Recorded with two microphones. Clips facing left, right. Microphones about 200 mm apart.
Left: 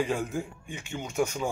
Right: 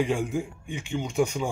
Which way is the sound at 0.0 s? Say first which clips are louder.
Right 3 dB; 10° right (ahead or behind).